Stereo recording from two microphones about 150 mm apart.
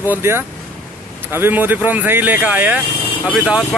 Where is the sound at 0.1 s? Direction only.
15° right (ahead or behind).